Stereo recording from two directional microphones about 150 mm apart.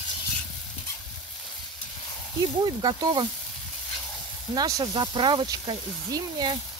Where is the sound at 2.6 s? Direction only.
30° right (ahead or behind).